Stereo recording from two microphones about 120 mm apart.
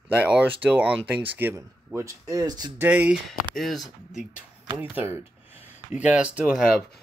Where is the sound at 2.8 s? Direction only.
15° right (ahead or behind).